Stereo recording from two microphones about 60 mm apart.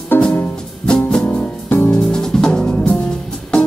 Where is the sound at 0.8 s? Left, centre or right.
Centre.